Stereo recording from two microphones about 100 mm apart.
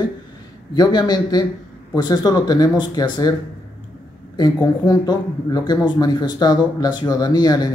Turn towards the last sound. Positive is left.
turn(degrees=40)  # may be behind; listen again after turning